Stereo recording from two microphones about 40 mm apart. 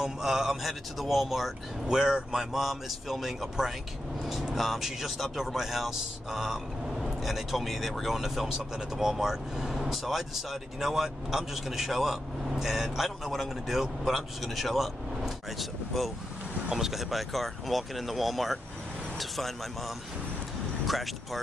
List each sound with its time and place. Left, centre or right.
0.0 s speech: centre
1.9 s speech: centre
2.5 s speech: centre